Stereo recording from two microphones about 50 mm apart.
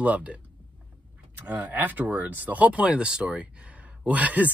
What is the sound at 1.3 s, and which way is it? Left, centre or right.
Speech, right.